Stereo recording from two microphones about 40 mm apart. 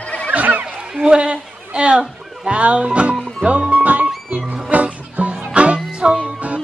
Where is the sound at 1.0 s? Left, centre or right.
Right.